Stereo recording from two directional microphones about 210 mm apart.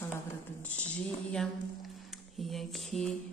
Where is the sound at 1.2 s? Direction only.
5° left (ahead or behind).